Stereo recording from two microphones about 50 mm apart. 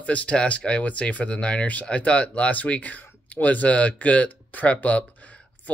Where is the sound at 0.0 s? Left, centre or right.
Left.